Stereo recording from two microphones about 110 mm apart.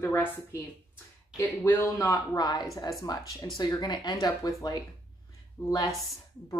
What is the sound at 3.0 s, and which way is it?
Speech, 30° left (ahead or behind).